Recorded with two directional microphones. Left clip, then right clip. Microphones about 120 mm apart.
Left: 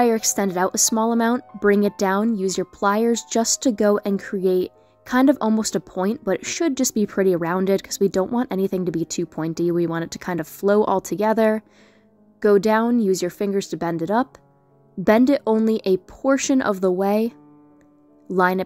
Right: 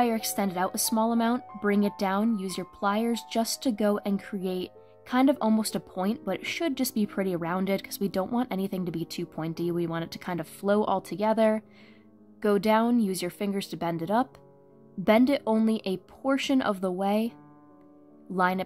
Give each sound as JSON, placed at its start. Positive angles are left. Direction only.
{"t": 0.0, "sound": "a woman's voice", "side_deg": 35}